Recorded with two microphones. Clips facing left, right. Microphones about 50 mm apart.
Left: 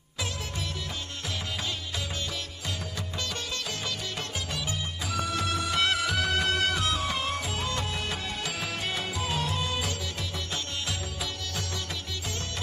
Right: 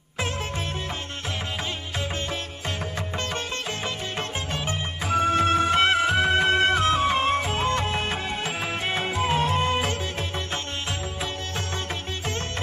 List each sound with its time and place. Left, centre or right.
4.5 s music: right